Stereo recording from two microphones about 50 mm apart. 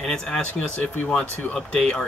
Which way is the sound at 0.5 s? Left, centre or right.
Left.